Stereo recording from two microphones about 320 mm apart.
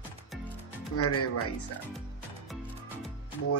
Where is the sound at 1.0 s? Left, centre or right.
Left.